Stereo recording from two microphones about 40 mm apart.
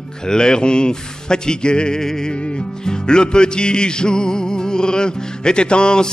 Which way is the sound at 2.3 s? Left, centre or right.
Left.